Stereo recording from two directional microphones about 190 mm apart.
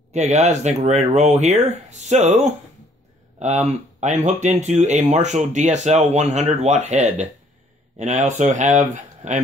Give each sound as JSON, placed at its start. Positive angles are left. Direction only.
{"t": 0.1, "sound": "speech", "side_deg": -35}